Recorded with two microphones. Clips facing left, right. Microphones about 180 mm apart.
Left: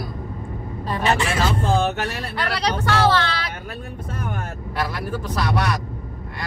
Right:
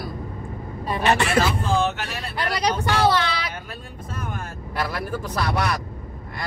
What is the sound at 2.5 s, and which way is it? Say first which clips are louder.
Speech: even; 15° right (ahead or behind).